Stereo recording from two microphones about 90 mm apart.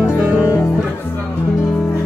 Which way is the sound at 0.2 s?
20° right (ahead or behind).